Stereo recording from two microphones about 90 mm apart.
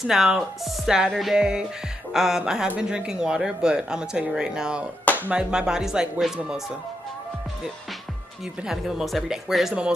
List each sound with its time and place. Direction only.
0.0 s speech: 5° right (ahead or behind)
5.0 s a sound: 20° left (ahead or behind)
5.3 s speech: 10° right (ahead or behind)
8.6 s speech: 5° right (ahead or behind)